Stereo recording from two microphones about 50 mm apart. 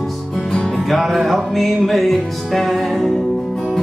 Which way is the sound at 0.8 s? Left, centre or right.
Centre.